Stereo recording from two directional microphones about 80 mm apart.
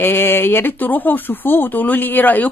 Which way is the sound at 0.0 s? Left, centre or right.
Left.